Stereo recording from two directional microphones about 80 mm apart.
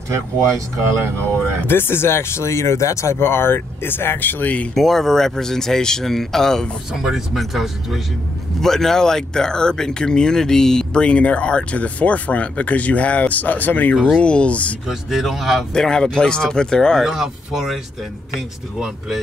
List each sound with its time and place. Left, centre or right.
1.7 s speech: left
4.7 s speech: centre
6.9 s speech: centre
14.9 s speech: centre
17.0 s speech: centre